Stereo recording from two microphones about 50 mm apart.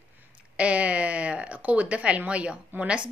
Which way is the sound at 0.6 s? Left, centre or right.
Right.